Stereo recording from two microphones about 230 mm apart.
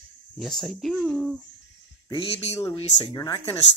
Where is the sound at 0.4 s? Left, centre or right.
Centre.